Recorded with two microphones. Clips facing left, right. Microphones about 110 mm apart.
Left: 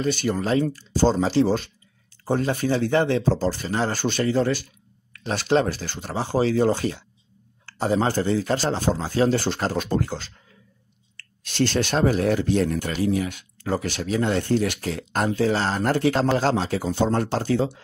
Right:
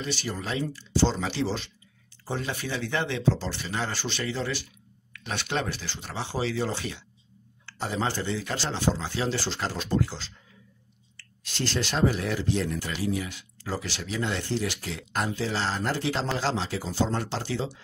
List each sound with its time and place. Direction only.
0.0 s speech: 50° left (ahead or behind)
11.1 s speech: 65° left (ahead or behind)